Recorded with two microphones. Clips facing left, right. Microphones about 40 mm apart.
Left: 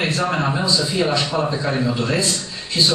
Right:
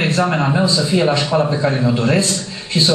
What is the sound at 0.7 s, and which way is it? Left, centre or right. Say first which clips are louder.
Speech: right 3 dB; right.